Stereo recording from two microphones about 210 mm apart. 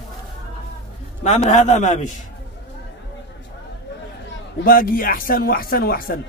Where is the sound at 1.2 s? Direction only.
35° left (ahead or behind).